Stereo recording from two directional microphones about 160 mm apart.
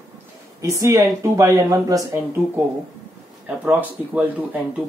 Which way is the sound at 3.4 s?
10° right (ahead or behind).